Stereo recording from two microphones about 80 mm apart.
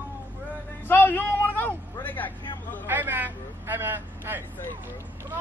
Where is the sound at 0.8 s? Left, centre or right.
Left.